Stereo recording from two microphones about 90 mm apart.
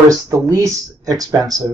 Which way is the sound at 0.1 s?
35° right (ahead or behind).